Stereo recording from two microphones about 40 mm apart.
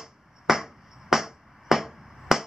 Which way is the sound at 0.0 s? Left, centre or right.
Centre.